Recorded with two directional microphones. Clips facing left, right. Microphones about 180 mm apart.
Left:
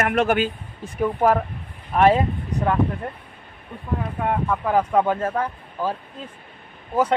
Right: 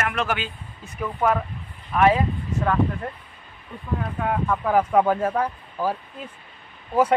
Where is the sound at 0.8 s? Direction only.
30° left (ahead or behind).